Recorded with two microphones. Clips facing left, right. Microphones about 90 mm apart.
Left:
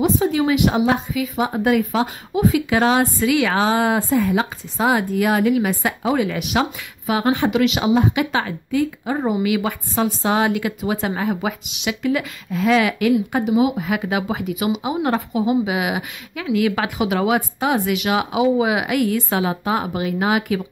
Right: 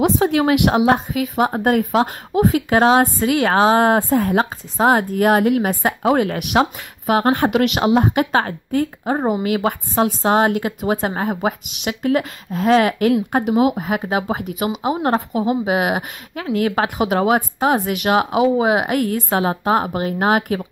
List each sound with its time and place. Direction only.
0.0 s a woman's voice: 65° right (ahead or behind); by 13.1 s 40° right (ahead or behind)
13.3 s a woman's voice: 55° right (ahead or behind)